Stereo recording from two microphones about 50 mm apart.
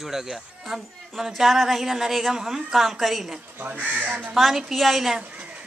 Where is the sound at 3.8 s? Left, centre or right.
Right.